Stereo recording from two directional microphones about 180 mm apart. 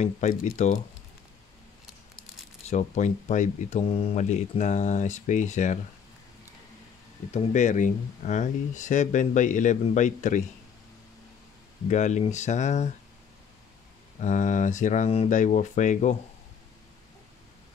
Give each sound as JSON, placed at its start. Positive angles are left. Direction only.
{"t": 0.0, "sound": "speech", "side_deg": 45}
{"t": 2.7, "sound": "speech", "side_deg": 40}
{"t": 7.3, "sound": "speech", "side_deg": 40}
{"t": 11.9, "sound": "speech", "side_deg": 40}
{"t": 14.2, "sound": "speech", "side_deg": 45}